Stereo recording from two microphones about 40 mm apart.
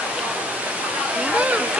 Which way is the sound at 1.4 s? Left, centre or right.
Right.